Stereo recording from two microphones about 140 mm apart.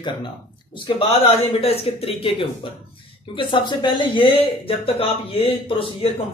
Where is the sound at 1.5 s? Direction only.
45° left (ahead or behind).